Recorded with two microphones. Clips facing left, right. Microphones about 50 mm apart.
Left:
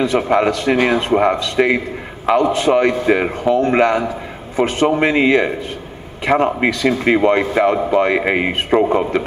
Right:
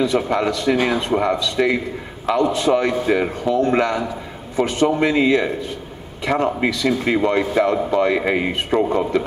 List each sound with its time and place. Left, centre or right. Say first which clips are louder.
0.0 s a man's voice: left 4 dB; left